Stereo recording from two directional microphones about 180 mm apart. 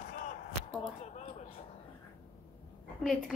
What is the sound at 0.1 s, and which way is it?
Arrow, 45° left (ahead or behind).